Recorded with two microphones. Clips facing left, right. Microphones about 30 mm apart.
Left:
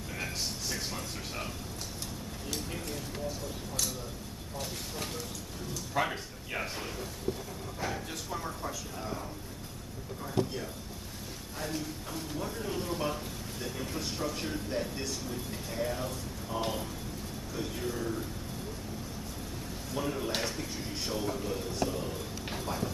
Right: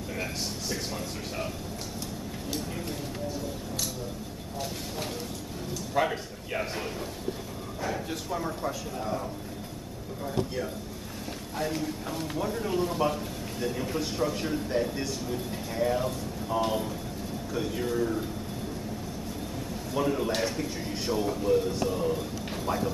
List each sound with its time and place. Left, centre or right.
0.2 s a sound: centre
5.9 s speech: centre
7.8 s speech: centre
11.5 s speech: right
12.4 s a man's voice: centre
19.9 s a man's voice: centre